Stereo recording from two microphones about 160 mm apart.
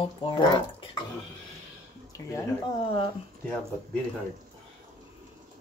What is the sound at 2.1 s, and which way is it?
Speech, 20° left (ahead or behind).